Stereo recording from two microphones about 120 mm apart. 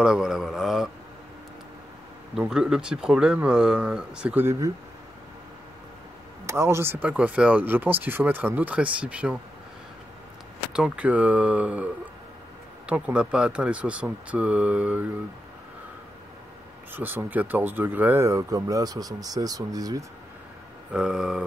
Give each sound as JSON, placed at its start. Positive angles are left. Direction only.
{"t": 0.0, "sound": "speech", "side_deg": -5}
{"t": 2.3, "sound": "speech", "side_deg": -5}
{"t": 6.4, "sound": "speech", "side_deg": -20}
{"t": 10.7, "sound": "speech", "side_deg": -10}
{"t": 16.9, "sound": "speech", "side_deg": -15}
{"t": 20.9, "sound": "speech", "side_deg": -5}